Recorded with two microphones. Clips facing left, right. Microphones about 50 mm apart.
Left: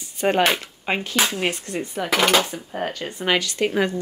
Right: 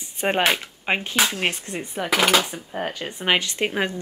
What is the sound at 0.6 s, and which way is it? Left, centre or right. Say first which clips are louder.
Speech: right 1 dB; centre.